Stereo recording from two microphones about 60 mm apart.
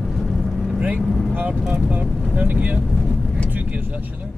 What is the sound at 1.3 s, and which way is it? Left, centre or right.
Speech, right.